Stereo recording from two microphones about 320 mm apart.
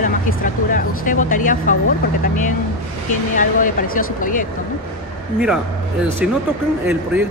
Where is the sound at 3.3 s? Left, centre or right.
Left.